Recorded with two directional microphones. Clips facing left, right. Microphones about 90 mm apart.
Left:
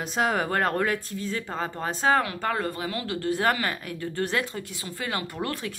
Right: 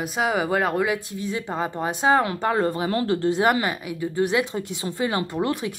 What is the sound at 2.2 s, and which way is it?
A woman's voice, 25° right (ahead or behind).